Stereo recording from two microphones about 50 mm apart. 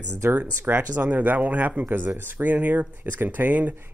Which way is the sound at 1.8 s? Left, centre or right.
Right.